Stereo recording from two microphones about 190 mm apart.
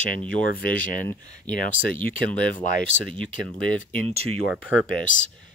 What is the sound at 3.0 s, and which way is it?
Speech, 5° left (ahead or behind).